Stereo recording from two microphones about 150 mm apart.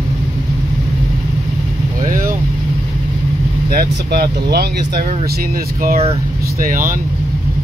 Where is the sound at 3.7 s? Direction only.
80° right.